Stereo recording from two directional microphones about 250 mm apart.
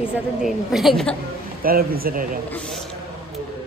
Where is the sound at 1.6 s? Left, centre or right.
Right.